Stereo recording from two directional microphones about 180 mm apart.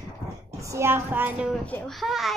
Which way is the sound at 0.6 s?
15° right (ahead or behind).